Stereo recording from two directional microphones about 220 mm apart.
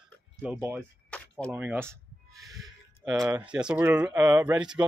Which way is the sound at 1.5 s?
10° right (ahead or behind).